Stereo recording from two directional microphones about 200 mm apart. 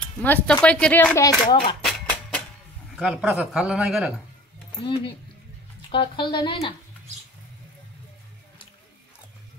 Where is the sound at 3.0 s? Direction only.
5° right (ahead or behind).